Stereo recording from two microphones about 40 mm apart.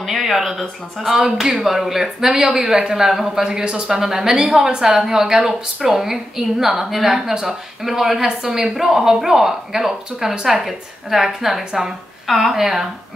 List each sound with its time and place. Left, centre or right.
0.0 s a woman's voice: centre
3.4 s a woman's voice: right